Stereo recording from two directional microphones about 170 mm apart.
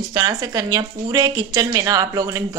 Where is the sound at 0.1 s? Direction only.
25° right (ahead or behind).